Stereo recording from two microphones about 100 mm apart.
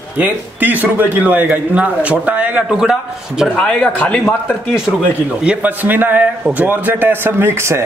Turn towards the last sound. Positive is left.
turn(degrees=-25)  # may be behind; listen again after turning